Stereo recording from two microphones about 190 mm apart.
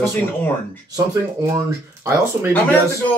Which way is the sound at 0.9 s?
15° right (ahead or behind).